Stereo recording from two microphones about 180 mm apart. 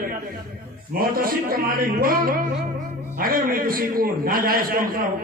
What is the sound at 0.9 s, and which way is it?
A man's voice, 55° right (ahead or behind).